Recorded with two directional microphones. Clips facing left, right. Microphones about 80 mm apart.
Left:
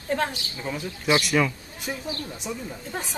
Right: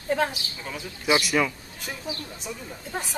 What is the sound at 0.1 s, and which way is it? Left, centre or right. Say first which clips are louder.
Speech: right 1 dB; centre.